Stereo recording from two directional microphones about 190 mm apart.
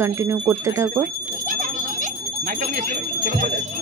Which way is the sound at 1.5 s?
45° right (ahead or behind).